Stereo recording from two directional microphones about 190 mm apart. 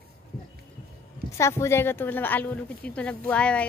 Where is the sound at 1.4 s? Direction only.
15° left (ahead or behind).